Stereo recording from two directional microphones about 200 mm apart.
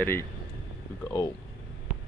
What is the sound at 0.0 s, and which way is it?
Speech, 10° left (ahead or behind).